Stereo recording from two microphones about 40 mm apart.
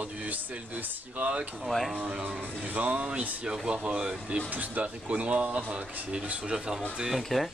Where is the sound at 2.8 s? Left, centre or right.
Right.